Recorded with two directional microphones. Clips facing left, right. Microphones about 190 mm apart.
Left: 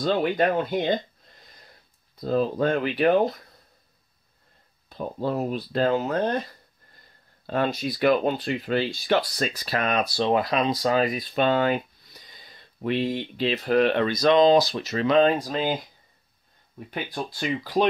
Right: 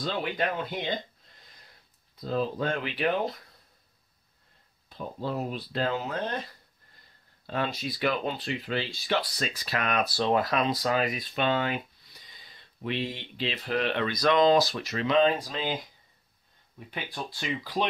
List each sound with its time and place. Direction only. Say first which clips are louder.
0.0 s speech: left 8 dB; 45° left (ahead or behind)
2.1 s speech: left 6 dB; 45° left (ahead or behind)
4.8 s speech: left 6 dB; 45° left (ahead or behind)
7.4 s speech: left 6 dB; 45° left (ahead or behind); by 10.0 s 30° left (ahead or behind)
10.1 s speech: left 2 dB; 20° left (ahead or behind); by 14.1 s 45° left (ahead or behind)
14.1 s speech: left 3 dB; 25° left (ahead or behind)
15.0 s speech: left 4 dB; 45° left (ahead or behind)
16.9 s speech: left 5 dB; 45° left (ahead or behind)